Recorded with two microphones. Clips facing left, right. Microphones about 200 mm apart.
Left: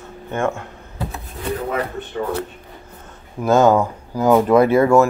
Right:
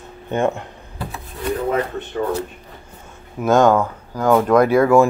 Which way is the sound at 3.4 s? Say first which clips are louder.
Even; centre (ahead or behind).